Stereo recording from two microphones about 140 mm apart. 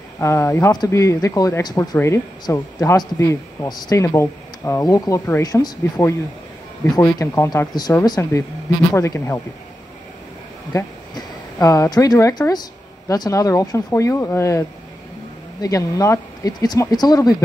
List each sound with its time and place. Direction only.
0.2 s a man's voice: 20° left (ahead or behind)
10.7 s a man's voice: 20° left (ahead or behind)
15.6 s a man's voice: 25° left (ahead or behind)